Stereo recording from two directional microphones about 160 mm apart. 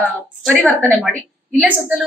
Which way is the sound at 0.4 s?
Centre (ahead or behind).